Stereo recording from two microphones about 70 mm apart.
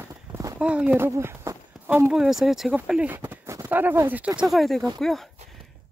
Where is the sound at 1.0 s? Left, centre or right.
Right.